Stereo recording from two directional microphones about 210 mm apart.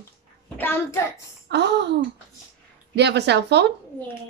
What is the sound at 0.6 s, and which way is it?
Speech, 10° left (ahead or behind).